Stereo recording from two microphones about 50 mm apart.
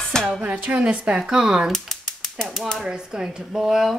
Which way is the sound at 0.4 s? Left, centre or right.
Right.